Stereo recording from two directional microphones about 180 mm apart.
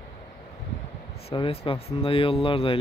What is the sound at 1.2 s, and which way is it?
Speech, 30° left (ahead or behind).